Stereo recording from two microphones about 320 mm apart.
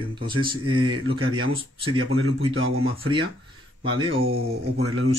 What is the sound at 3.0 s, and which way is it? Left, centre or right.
Speech, centre.